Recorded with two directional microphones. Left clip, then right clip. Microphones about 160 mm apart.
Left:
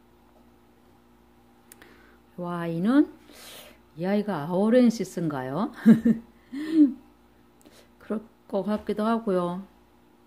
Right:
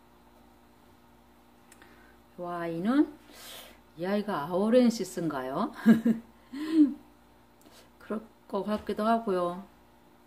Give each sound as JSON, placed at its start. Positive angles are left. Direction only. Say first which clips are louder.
{"t": 2.4, "sound": "speech", "louder": "left 3 dB", "side_deg": 55}